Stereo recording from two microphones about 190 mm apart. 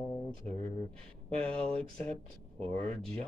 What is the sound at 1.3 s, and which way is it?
Speech, 5° left (ahead or behind).